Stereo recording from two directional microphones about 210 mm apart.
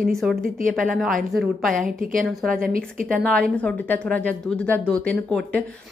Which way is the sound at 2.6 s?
40° right (ahead or behind).